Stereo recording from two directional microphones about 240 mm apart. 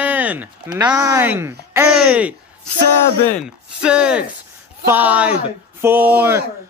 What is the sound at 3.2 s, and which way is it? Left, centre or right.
Speech, centre.